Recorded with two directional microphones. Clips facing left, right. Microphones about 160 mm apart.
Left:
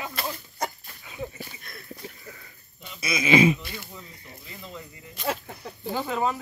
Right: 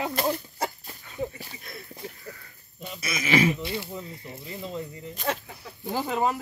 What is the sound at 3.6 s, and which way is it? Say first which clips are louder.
Speech: right 8 dB; 25° right (ahead or behind).